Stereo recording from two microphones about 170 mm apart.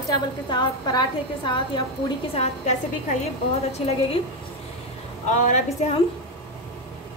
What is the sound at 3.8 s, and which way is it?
Speech, 35° left (ahead or behind).